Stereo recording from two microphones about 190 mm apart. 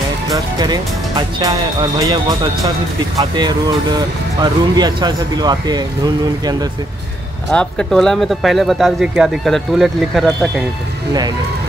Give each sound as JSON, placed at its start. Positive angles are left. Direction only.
{"t": 0.3, "sound": "speech", "side_deg": -20}
{"t": 7.5, "sound": "speech", "side_deg": 5}